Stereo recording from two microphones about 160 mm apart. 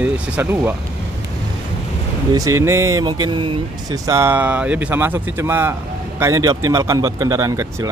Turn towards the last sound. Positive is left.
turn(degrees=-20)  # may be behind; listen again after turning